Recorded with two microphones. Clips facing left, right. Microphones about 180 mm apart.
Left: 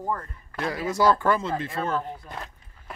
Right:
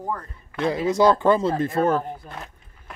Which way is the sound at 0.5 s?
25° right (ahead or behind).